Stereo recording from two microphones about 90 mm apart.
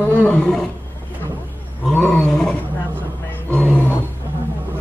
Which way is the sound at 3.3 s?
15° left (ahead or behind).